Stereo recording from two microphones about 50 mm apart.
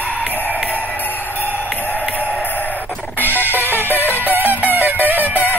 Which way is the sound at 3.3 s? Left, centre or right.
Right.